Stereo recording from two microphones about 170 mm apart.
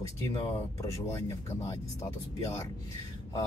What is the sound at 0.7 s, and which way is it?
Speech, 15° left (ahead or behind).